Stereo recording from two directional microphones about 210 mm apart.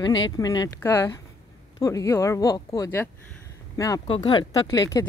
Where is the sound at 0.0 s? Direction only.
20° left (ahead or behind).